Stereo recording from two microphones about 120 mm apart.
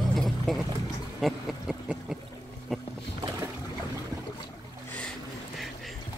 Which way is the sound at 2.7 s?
Centre (ahead or behind).